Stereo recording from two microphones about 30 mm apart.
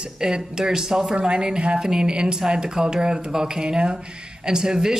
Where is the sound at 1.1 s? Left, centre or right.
Right.